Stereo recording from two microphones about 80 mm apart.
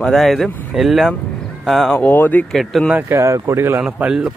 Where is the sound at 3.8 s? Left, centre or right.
Centre.